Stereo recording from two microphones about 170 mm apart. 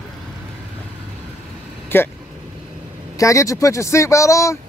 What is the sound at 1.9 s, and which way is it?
Speech, 10° left (ahead or behind).